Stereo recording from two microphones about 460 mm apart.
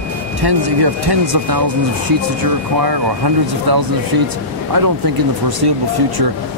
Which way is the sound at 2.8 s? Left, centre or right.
Right.